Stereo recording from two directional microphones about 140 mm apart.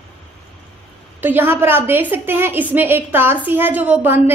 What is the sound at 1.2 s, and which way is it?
A woman's voice, 15° right (ahead or behind).